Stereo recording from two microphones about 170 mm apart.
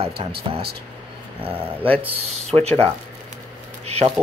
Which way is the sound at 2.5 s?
20° right (ahead or behind).